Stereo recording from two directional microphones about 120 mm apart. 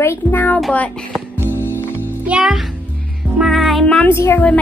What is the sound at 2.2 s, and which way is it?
Speech, 5° right (ahead or behind).